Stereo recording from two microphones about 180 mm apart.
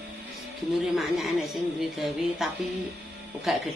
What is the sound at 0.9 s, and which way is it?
Speech, centre (ahead or behind).